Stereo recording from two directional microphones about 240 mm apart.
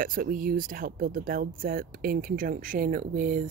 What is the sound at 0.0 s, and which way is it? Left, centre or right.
Speech, right.